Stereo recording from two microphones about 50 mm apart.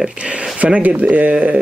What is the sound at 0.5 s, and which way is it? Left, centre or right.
Speech, right.